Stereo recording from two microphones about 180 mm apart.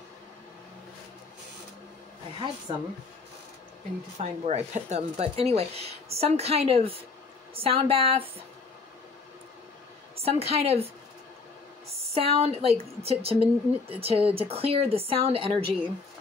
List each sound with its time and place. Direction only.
2.7 s speech: 30° right (ahead or behind)
4.2 s speech: 35° right (ahead or behind)
10.1 s speech: 35° right (ahead or behind)
12.1 s speech: 35° right (ahead or behind)